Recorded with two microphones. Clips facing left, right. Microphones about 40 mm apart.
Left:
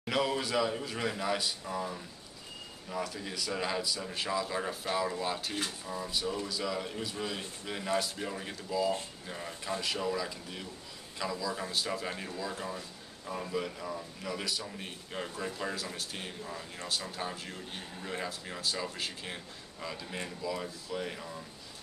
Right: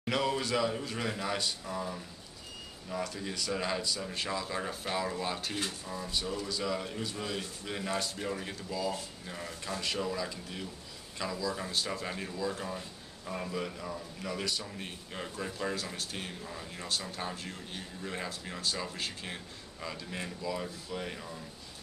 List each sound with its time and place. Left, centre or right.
0.0 s speech: centre